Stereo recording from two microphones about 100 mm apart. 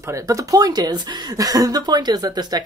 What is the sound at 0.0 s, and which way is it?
Speech, 30° right (ahead or behind).